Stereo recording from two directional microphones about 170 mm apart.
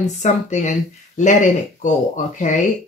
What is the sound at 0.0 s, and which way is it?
Speech, 45° left (ahead or behind).